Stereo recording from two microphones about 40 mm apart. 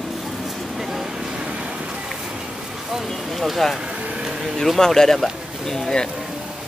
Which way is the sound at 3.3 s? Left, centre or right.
Centre.